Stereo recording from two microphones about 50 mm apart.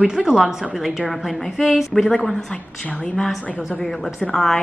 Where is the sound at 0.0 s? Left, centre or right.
Centre.